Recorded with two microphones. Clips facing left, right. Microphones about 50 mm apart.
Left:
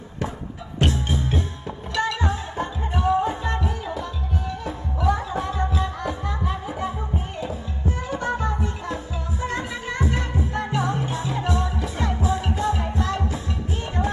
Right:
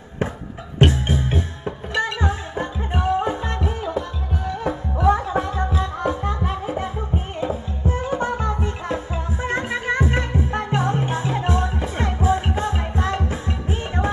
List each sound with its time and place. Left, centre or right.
0.7 s music: right